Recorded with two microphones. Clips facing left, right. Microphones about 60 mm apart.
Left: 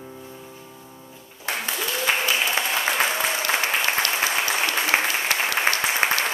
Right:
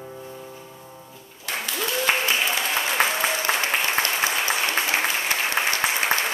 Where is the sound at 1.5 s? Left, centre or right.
Left.